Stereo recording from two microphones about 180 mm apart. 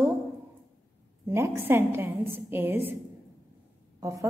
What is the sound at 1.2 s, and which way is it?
A woman's voice, 15° right (ahead or behind).